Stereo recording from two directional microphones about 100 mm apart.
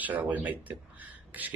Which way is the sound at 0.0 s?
15° right (ahead or behind).